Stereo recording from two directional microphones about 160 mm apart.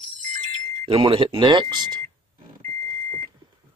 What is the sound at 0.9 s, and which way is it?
Speech, 30° right (ahead or behind).